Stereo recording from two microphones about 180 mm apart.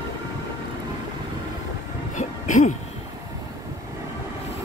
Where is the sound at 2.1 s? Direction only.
45° left (ahead or behind).